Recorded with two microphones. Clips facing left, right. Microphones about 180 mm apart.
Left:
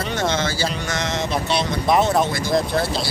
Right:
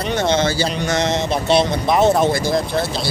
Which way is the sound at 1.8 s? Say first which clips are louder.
Even; centre (ahead or behind).